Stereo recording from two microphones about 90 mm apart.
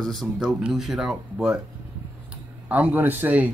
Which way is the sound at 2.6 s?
15° right (ahead or behind).